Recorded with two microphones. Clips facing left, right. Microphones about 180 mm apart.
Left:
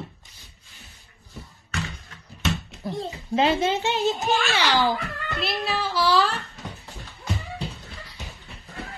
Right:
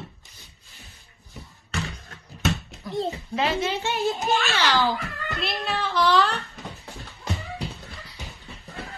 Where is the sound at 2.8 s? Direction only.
25° left (ahead or behind).